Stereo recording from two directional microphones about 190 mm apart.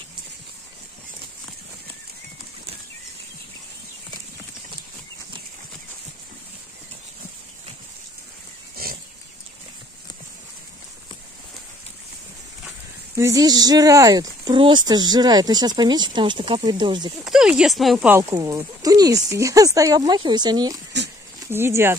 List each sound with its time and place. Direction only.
13.1 s speech: 15° right (ahead or behind)
17.2 s speech: 5° right (ahead or behind)
18.3 s speech: 15° right (ahead or behind)
20.9 s speech: 65° right (ahead or behind)
21.5 s speech: 10° right (ahead or behind)